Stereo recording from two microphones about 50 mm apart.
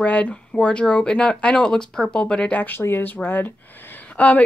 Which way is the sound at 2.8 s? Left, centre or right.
Left.